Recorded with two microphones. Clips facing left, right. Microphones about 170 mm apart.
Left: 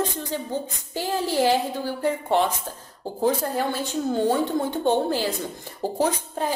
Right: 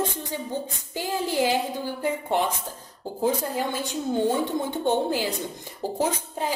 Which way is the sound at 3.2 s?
15° right (ahead or behind).